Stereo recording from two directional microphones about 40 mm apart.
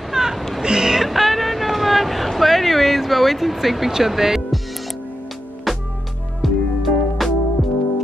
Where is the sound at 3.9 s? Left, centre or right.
Centre.